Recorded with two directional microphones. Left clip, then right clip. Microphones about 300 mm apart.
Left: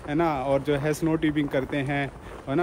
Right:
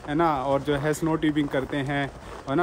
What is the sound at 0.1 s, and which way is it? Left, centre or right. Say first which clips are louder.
A man's voice: right 1 dB; centre.